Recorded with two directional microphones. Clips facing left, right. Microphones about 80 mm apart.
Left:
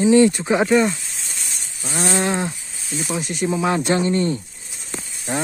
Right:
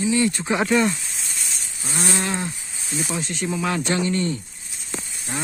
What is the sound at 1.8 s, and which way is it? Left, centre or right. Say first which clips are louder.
Speech: left 4 dB; left.